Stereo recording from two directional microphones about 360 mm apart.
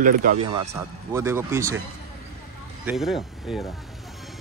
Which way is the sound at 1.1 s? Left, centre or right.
Centre.